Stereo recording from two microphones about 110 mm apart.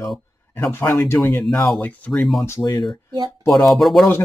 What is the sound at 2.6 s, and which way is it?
Speech, 40° left (ahead or behind).